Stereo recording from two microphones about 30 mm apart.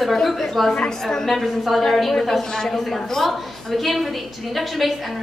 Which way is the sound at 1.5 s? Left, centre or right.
Centre.